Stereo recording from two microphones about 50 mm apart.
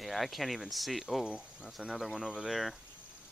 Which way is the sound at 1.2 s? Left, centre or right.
Centre.